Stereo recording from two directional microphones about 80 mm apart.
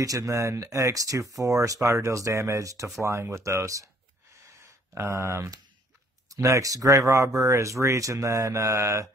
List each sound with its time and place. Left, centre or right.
0.0 s speech: right